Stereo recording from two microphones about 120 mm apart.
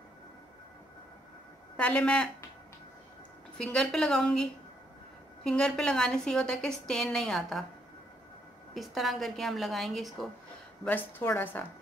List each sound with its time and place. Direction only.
1.8 s a woman's voice: 10° left (ahead or behind)
3.5 s a woman's voice: 5° left (ahead or behind)
8.7 s a woman's voice: centre (ahead or behind)
10.8 s a woman's voice: 15° left (ahead or behind)